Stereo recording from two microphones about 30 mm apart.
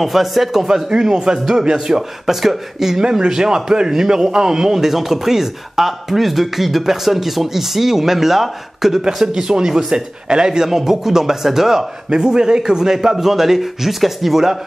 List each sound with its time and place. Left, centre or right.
0.0 s speech: centre
0.8 s a man's voice: right
2.0 s speech: centre
3.0 s a man's voice: right
10.7 s speech: centre
12.1 s a man's voice: right
12.9 s speech: centre